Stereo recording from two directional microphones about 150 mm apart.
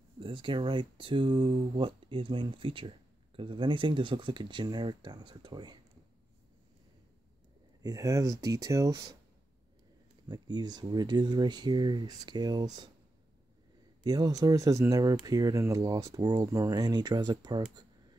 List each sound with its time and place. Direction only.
0.2 s speech: 35° right (ahead or behind)
7.8 s speech: 20° right (ahead or behind)
10.2 s speech: 30° right (ahead or behind)
14.0 s speech: 25° right (ahead or behind)